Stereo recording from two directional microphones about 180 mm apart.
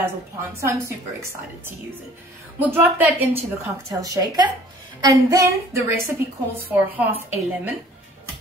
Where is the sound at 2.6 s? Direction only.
10° right (ahead or behind).